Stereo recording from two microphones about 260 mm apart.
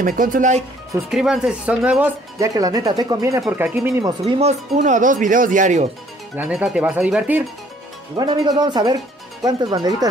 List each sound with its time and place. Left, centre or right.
0.0 s speech: right
1.1 s speech: centre
4.0 s speech: right
6.3 s speech: centre
8.2 s speech: centre